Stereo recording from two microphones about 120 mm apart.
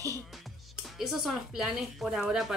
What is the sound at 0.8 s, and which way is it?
Speech, centre (ahead or behind).